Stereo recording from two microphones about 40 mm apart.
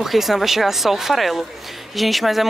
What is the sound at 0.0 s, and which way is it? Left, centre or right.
Speech, centre.